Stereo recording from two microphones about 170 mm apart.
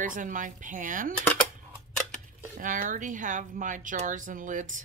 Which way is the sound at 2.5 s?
55° right (ahead or behind).